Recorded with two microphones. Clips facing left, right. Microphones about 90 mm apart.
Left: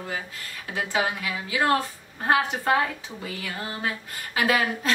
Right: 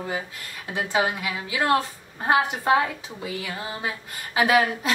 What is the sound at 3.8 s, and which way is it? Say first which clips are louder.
Speech: even; 15° right (ahead or behind).